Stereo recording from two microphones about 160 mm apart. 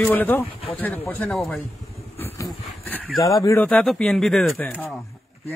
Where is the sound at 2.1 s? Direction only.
15° left (ahead or behind).